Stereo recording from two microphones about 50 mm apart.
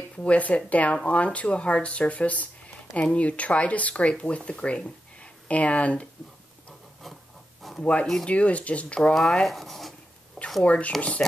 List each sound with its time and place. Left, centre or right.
0.2 s speech: left
7.8 s speech: left
9.1 s speech: centre
10.6 s speech: left